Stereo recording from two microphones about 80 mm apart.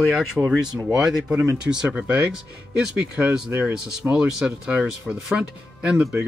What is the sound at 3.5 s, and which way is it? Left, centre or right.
Speech, right.